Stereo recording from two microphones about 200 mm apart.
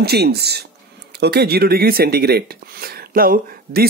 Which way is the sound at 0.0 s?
55° right (ahead or behind).